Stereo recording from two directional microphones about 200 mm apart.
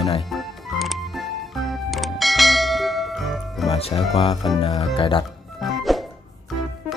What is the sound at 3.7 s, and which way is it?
Speech, 30° left (ahead or behind).